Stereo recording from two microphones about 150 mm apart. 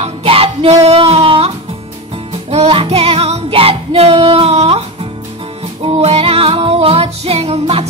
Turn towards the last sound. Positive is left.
turn(degrees=-40)  # may be behind; listen again after turning